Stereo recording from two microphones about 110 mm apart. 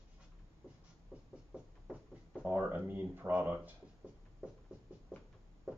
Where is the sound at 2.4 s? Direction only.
15° right (ahead or behind).